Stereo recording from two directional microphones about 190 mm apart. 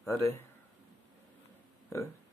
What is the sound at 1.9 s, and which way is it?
Speech, 15° left (ahead or behind).